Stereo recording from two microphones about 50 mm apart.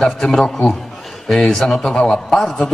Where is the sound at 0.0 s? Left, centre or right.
Centre.